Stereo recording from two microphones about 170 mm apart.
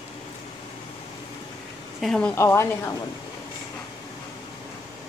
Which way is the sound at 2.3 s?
15° left (ahead or behind).